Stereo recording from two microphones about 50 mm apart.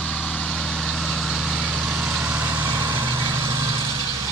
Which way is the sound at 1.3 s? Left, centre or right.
Centre.